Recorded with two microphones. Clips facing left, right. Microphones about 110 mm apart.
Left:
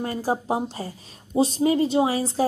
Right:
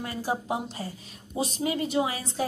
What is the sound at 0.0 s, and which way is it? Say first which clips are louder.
A woman's voice: left 5 dB; 40° left (ahead or behind).